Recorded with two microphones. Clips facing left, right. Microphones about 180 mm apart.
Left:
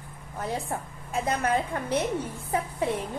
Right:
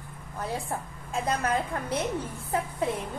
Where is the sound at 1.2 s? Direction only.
15° left (ahead or behind).